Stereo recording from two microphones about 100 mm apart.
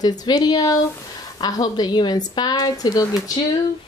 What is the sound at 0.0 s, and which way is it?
A woman's voice, 40° left (ahead or behind).